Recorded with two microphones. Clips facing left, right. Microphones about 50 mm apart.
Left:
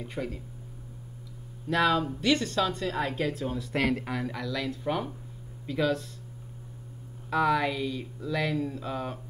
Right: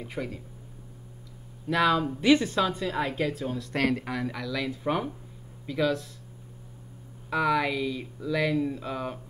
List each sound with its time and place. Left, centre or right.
0.0 s a woman's voice: centre
1.7 s a woman's voice: centre
2.0 s a woman's voice: centre
5.7 s a woman's voice: centre
7.2 s a woman's voice: centre